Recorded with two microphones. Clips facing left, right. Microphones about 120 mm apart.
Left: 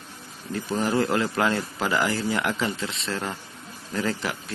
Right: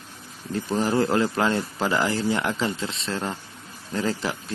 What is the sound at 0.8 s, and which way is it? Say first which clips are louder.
A man's voice: right 1 dB; 25° right (ahead or behind).